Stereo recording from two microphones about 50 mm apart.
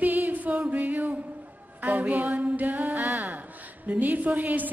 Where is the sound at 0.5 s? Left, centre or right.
Right.